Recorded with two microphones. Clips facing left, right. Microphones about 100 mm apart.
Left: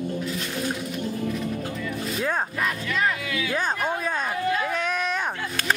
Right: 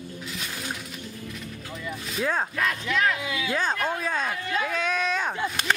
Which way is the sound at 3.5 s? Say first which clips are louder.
Even; 10° left (ahead or behind).